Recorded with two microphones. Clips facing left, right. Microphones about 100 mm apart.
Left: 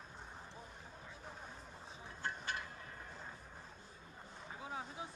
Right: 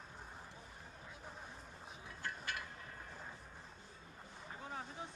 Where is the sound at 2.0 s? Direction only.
30° left (ahead or behind).